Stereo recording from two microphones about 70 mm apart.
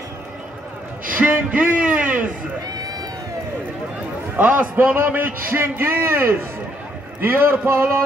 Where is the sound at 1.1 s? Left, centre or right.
Right.